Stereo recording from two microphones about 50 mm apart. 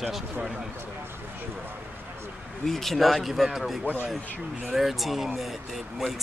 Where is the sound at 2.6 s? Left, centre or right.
Centre.